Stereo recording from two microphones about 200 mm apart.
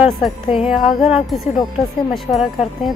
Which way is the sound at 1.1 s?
Centre (ahead or behind).